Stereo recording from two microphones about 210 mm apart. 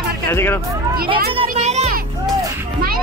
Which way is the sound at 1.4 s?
35° right (ahead or behind).